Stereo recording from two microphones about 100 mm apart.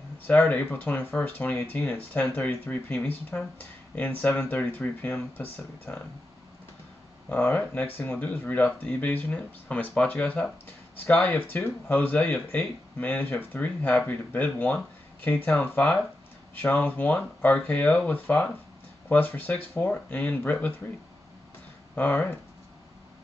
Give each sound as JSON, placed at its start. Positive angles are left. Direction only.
{"t": 0.3, "sound": "speech", "side_deg": 15}
{"t": 7.2, "sound": "speech", "side_deg": 20}
{"t": 21.9, "sound": "speech", "side_deg": 20}